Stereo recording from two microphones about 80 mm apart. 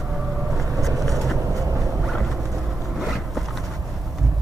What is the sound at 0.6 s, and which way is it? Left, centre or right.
Vehicle, right.